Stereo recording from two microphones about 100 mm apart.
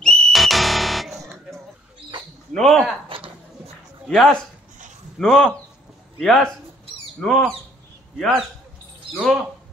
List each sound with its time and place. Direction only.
0.0 s music: 5° left (ahead or behind)
2.5 s speech: 5° left (ahead or behind)
3.1 s a sound: 65° right (ahead or behind)
4.1 s speech: 5° left (ahead or behind)